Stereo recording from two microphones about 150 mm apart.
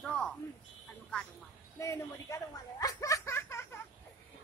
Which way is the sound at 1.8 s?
20° left (ahead or behind).